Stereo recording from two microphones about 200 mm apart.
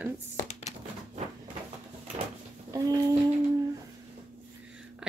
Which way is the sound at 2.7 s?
20° right (ahead or behind).